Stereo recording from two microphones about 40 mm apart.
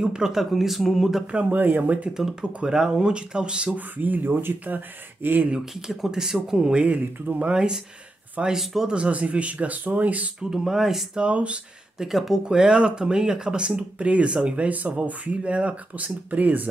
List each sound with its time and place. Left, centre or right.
0.0 s speech: centre
0.5 s speech: centre
1.2 s speech: right
1.6 s speech: right
2.4 s speech: right
3.7 s speech: right
4.6 s speech: right
5.8 s speech: centre
7.3 s speech: right
10.5 s speech: centre
11.1 s speech: right
12.0 s speech: centre; by 16.6 s right